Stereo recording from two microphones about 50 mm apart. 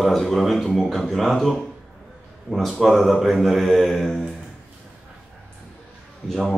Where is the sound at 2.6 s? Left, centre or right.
Centre.